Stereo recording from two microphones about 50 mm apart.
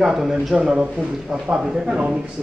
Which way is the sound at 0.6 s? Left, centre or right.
Right.